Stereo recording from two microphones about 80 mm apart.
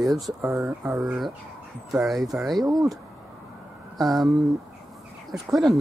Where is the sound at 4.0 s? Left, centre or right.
Centre.